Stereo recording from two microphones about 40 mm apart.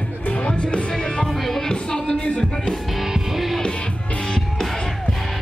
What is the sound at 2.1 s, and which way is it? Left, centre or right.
Music, left.